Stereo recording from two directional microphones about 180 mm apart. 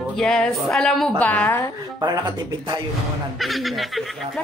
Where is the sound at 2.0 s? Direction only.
25° right (ahead or behind).